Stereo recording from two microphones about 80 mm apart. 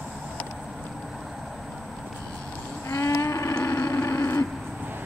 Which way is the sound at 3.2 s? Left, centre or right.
Left.